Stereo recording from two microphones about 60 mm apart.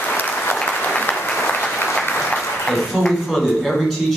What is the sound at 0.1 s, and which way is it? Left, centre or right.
Applause, left.